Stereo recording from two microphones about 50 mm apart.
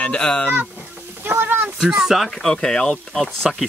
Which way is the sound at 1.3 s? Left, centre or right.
Right.